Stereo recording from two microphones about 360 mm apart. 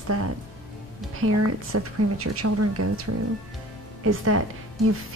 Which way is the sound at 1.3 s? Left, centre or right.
Right.